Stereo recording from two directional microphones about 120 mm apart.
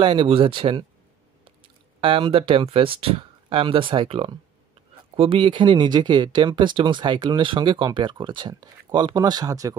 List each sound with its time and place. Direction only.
0.0 s speech: 45° right (ahead or behind); by 9.8 s 30° right (ahead or behind)